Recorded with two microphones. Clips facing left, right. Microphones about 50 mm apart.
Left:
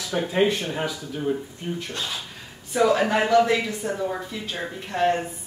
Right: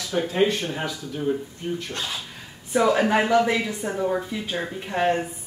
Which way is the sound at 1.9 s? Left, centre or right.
Centre.